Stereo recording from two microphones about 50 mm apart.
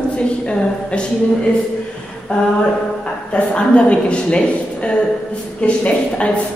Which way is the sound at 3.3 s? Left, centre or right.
Left.